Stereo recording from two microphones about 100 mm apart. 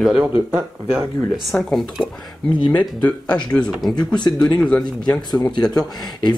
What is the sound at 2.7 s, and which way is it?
Speech, 15° left (ahead or behind).